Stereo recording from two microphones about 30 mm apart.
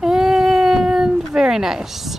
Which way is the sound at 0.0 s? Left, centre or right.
Centre.